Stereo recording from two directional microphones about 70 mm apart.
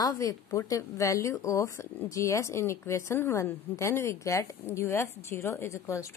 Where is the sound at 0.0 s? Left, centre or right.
Left.